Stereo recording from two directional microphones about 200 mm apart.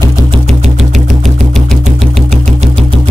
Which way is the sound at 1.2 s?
Centre (ahead or behind).